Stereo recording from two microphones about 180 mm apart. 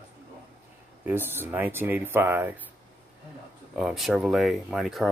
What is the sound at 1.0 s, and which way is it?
Speech, 10° right (ahead or behind).